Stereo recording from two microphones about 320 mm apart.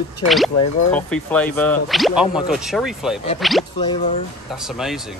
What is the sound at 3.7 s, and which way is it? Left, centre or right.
Speech, centre.